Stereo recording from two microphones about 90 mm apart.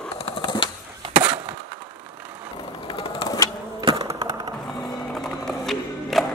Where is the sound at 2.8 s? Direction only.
90° left.